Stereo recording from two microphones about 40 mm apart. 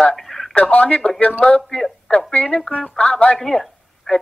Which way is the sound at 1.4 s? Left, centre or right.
Centre.